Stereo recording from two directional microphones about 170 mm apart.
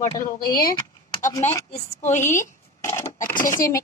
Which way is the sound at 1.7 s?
45° left (ahead or behind).